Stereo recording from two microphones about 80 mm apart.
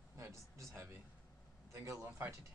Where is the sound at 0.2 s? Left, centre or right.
Right.